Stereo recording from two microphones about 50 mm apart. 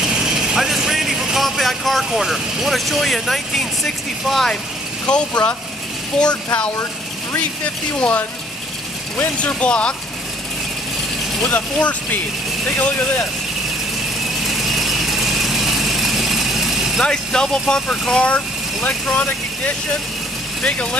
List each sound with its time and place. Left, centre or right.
0.0 s vehicle: centre
1.4 s vehicle: centre
2.0 s speech: centre
5.0 s speech: left
7.3 s speech: left
9.2 s speech: left
11.4 s speech: left
14.4 s vehicle: centre
17.0 s speech: centre; by 19.2 s left
20.6 s speech: left